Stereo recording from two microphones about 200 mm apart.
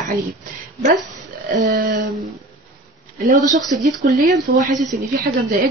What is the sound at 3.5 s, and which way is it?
Speech, centre (ahead or behind).